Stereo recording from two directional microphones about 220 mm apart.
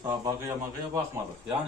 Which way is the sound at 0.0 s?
15° right (ahead or behind).